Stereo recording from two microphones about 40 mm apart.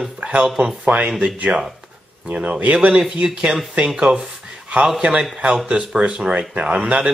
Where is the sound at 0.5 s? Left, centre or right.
Centre.